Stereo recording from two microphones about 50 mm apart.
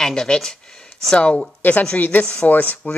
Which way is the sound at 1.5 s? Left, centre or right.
Left.